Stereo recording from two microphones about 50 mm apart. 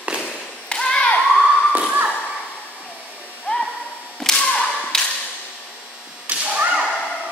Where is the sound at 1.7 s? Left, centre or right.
Right.